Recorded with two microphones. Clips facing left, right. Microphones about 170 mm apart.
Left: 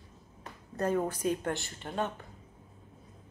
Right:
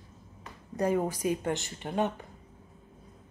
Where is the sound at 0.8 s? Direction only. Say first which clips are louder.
Right 2 dB; 10° right (ahead or behind).